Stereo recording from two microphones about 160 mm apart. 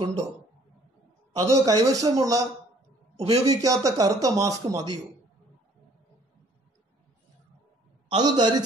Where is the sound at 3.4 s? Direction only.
20° right (ahead or behind).